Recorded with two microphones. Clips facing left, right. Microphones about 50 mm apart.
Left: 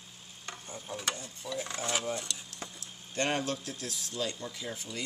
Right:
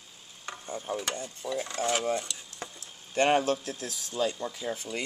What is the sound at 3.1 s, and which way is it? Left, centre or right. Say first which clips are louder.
Speech: right 7 dB; right.